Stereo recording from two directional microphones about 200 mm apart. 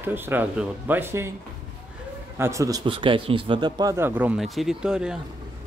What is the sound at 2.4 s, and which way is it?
Speech, 15° right (ahead or behind).